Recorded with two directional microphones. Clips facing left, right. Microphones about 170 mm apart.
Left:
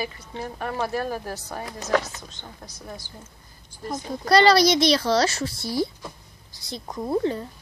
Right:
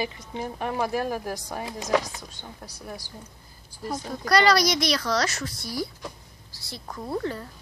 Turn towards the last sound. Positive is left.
turn(degrees=20)  # may be behind; listen again after turning